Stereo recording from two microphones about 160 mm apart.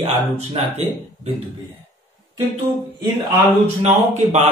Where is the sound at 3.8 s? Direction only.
45° right (ahead or behind).